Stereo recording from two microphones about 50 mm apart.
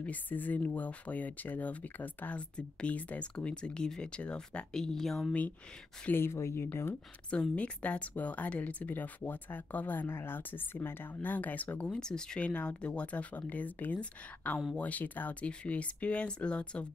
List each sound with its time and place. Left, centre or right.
0.0 s speech: left
3.3 s speech: centre
4.7 s speech: centre
6.1 s speech: left
7.5 s speech: left
11.2 s speech: left
11.8 s speech: centre
12.4 s speech: left